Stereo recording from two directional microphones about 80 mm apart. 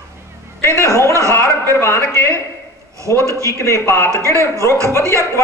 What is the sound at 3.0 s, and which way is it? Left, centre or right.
Speech, right.